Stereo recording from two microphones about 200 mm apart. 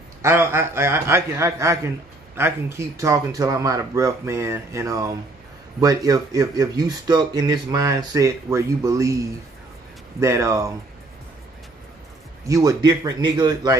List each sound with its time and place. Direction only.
0.2 s speech: 15° right (ahead or behind)
10.2 s speech: 15° right (ahead or behind)
12.4 s speech: 20° right (ahead or behind)